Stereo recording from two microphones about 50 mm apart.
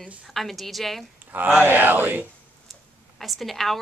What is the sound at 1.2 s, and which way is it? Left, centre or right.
Speech, right.